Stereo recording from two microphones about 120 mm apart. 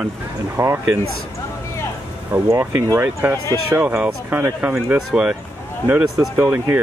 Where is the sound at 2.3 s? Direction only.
25° right (ahead or behind).